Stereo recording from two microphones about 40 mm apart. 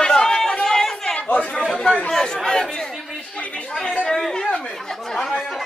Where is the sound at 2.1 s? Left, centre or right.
Centre.